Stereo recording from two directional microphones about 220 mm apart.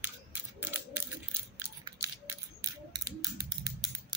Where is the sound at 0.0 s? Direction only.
10° right (ahead or behind).